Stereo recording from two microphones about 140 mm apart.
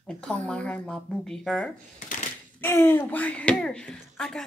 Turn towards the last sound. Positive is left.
turn(degrees=5)  # may be behind; listen again after turning